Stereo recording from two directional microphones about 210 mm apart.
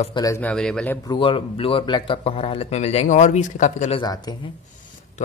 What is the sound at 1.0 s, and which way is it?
A man's voice, 25° left (ahead or behind).